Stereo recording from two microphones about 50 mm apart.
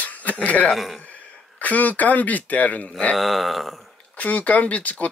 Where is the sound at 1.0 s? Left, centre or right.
Left.